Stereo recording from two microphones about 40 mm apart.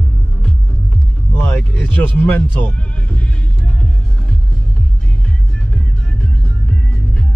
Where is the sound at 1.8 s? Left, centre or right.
Left.